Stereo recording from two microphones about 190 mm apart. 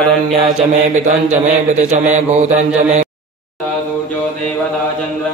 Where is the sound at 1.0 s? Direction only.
40° right (ahead or behind).